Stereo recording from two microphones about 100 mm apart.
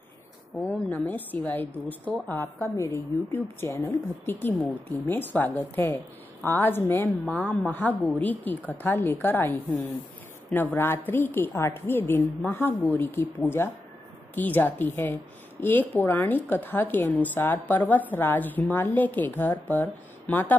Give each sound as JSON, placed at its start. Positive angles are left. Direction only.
{"t": 0.6, "sound": "a woman's voice", "side_deg": 20}
{"t": 2.4, "sound": "a woman's voice", "side_deg": 30}